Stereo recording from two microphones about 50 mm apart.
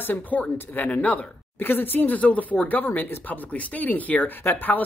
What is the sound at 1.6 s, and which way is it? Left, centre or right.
Speech, left.